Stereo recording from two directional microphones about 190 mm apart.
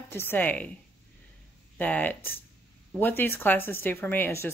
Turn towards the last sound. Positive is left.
turn(degrees=10)  # may be behind; listen again after turning